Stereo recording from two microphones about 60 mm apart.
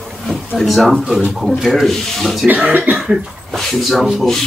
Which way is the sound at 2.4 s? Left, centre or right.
Right.